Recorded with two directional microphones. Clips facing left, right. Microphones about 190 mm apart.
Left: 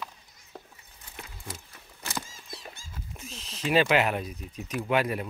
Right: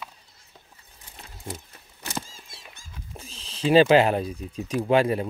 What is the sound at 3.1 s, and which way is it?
Speech, 30° right (ahead or behind).